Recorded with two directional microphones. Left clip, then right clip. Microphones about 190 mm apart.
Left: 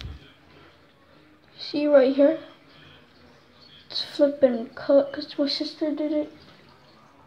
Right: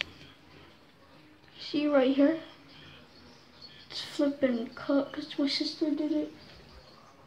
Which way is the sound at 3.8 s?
10° left (ahead or behind).